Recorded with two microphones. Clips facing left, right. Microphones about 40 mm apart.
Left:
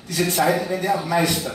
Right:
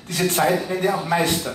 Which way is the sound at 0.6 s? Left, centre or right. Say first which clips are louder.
Right 1 dB; right.